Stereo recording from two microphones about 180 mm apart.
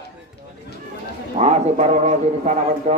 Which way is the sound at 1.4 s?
40° right (ahead or behind).